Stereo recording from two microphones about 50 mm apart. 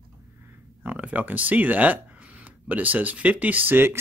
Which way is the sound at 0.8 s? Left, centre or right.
Right.